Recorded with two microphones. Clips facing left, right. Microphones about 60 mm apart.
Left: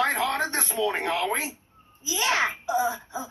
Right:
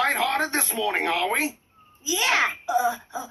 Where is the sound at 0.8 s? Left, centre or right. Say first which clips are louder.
Right 1 dB; right.